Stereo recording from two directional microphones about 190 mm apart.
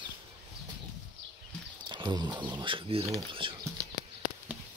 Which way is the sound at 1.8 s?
25° right (ahead or behind).